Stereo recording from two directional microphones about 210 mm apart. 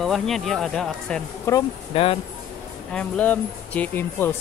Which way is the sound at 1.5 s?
10° left (ahead or behind).